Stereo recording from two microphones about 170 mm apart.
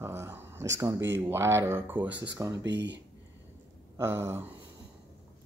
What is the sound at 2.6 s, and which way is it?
Speech, 90° right.